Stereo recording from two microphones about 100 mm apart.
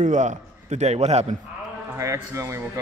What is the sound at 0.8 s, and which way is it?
Speech, 90° right.